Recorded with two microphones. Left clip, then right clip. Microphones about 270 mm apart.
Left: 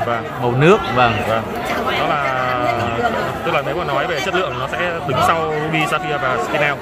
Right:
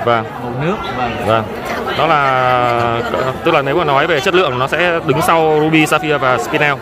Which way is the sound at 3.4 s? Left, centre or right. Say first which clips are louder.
Right 8 dB; right.